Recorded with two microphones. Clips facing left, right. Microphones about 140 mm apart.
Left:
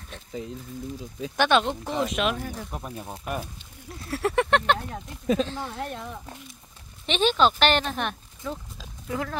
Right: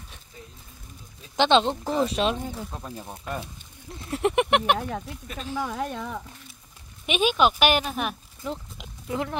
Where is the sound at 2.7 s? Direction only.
15° left (ahead or behind).